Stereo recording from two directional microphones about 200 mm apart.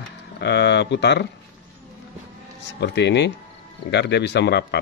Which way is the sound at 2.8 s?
60° left (ahead or behind).